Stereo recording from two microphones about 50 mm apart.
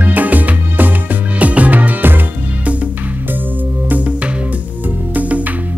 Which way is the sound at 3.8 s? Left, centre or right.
Right.